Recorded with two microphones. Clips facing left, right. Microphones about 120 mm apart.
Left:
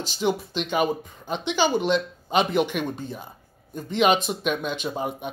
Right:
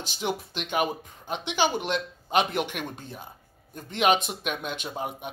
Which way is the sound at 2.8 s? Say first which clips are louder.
Left 6 dB; 15° left (ahead or behind).